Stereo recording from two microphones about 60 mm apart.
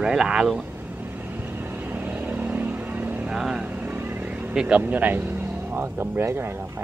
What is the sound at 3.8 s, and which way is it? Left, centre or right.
Vehicle, right.